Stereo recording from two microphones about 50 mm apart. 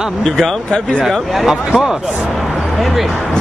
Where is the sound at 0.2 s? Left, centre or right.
Centre.